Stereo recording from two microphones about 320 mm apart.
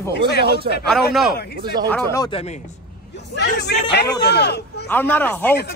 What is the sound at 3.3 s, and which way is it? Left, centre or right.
Speech, left.